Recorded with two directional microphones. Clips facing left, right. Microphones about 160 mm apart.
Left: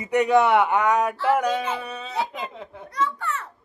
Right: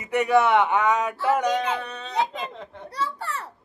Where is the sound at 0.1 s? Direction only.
15° left (ahead or behind).